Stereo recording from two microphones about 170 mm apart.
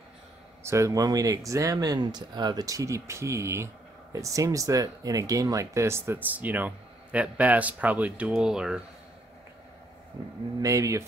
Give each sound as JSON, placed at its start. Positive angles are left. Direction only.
{"t": 0.7, "sound": "speech", "side_deg": -20}
{"t": 10.6, "sound": "speech", "side_deg": -20}